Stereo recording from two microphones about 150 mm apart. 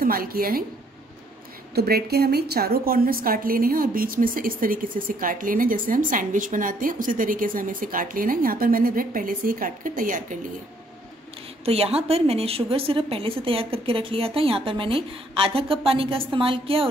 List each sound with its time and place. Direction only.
0.0 s a woman's voice: 80° right
1.8 s a woman's voice: 90° right; by 10.4 s 65° right (ahead or behind)
11.6 s a woman's voice: 40° right (ahead or behind)